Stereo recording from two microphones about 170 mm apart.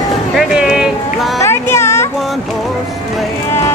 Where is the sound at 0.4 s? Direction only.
5° right (ahead or behind).